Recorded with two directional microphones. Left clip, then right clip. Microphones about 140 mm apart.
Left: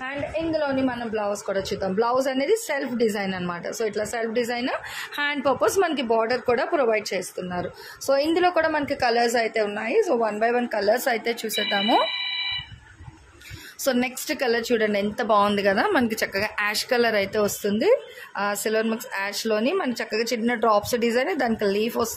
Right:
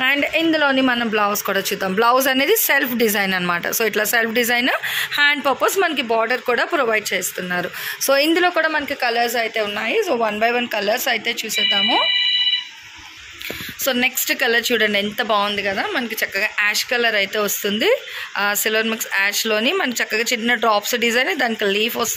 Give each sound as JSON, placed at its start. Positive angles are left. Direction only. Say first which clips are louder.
{"t": 0.0, "sound": "a woman's voice", "louder": "right 11 dB", "side_deg": -45}
{"t": 1.5, "sound": "speech", "louder": "right 5 dB", "side_deg": -15}
{"t": 8.4, "sound": "speech", "louder": "right 3 dB", "side_deg": 10}
{"t": 9.8, "sound": "speech", "louder": "right 3 dB", "side_deg": 5}
{"t": 13.8, "sound": "speech", "louder": "right 5 dB", "side_deg": 10}
{"t": 15.4, "sound": "speech", "louder": "even", "side_deg": 40}
{"t": 16.3, "sound": "speech", "louder": "right 8 dB", "side_deg": 25}
{"t": 17.6, "sound": "speech", "louder": "right 3 dB", "side_deg": 10}